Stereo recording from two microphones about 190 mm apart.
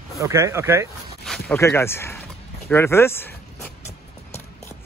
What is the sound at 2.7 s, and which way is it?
Zipper, 15° left (ahead or behind).